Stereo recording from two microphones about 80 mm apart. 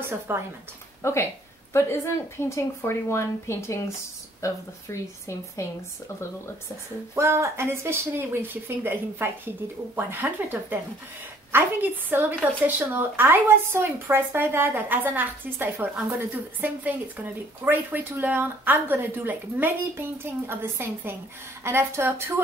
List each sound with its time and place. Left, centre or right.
0.3 s speech: right
1.0 s a woman's voice: left
7.2 s speech: right